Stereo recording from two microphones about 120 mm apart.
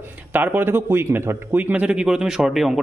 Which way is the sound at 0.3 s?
15° right (ahead or behind).